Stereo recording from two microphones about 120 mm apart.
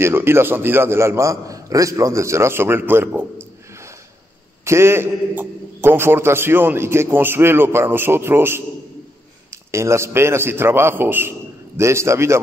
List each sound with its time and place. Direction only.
0.0 s a man's voice: 20° right (ahead or behind)
4.6 s a man's voice: 20° right (ahead or behind)